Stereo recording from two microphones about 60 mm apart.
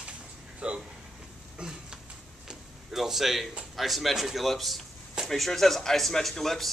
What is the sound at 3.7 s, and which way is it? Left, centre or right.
Speech, centre.